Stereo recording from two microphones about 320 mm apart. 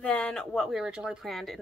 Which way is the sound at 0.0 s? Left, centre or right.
Centre.